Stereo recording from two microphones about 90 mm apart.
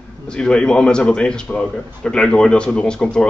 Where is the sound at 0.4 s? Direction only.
10° left (ahead or behind).